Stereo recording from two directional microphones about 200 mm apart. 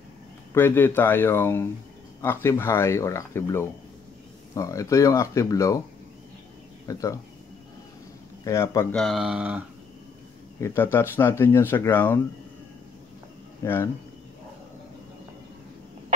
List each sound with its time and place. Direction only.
0.6 s speech: 10° left (ahead or behind)
6.9 s speech: 15° left (ahead or behind)
8.5 s speech: 15° left (ahead or behind)
8.9 s speech: centre (ahead or behind)
10.6 s speech: 10° left (ahead or behind)